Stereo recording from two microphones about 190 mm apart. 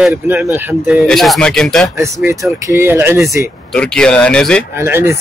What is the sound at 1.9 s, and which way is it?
Speech, 15° right (ahead or behind).